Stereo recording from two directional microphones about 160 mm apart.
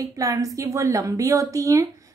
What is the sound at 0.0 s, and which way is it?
A woman's voice, 20° right (ahead or behind).